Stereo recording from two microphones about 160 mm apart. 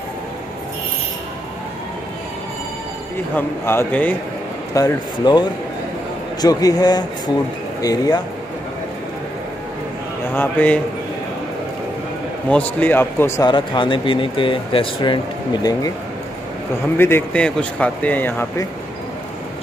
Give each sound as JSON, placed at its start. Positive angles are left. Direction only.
{"t": 3.3, "sound": "speech", "side_deg": 10}
{"t": 4.7, "sound": "speech", "side_deg": 25}
{"t": 10.3, "sound": "speech", "side_deg": 10}
{"t": 12.4, "sound": "speech", "side_deg": 10}
{"t": 13.5, "sound": "speech", "side_deg": 30}
{"t": 16.9, "sound": "speech", "side_deg": 15}